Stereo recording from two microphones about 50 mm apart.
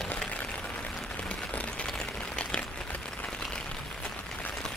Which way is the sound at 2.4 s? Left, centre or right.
Centre.